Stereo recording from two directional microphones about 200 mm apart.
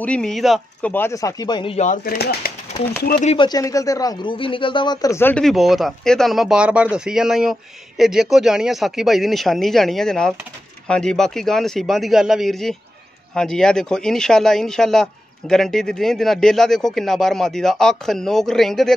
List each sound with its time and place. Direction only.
0.0 s speech: 5° left (ahead or behind)
0.9 s speech: 15° left (ahead or behind); by 2.0 s 30° left (ahead or behind)
2.0 s speech: 50° left (ahead or behind)
3.1 s speech: 35° left (ahead or behind)
3.4 s speech: 15° left (ahead or behind); by 18.9 s centre (ahead or behind)